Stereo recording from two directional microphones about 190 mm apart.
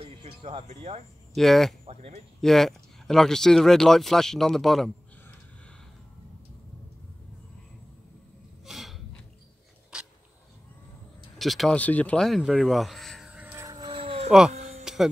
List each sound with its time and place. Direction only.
0.0 s music: 30° right (ahead or behind)
1.3 s speech: centre (ahead or behind)
1.9 s speech: 35° right (ahead or behind)
2.4 s speech: centre (ahead or behind)
8.6 s gasp: centre (ahead or behind)
11.3 s a sound: centre (ahead or behind); by 14.3 s 30° right (ahead or behind)
14.5 s music: 35° right (ahead or behind)